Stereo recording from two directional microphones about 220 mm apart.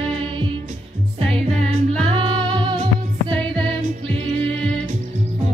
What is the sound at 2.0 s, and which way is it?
Singing, 25° right (ahead or behind).